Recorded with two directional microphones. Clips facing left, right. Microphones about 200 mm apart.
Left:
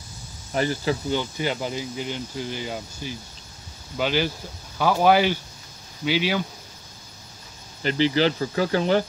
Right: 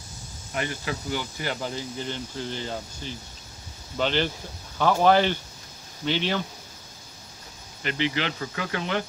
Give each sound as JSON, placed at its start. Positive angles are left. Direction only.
{"t": 0.5, "sound": "speech", "side_deg": 35}
{"t": 1.4, "sound": "speech", "side_deg": 15}
{"t": 7.8, "sound": "speech", "side_deg": 35}